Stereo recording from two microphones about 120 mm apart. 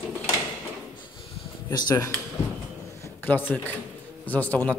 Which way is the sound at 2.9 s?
20° left (ahead or behind).